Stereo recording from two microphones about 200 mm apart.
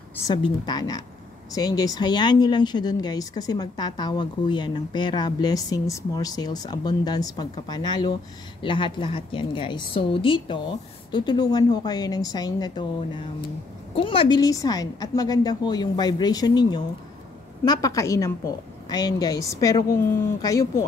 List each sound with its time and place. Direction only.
0.3 s a woman's voice: 20° left (ahead or behind)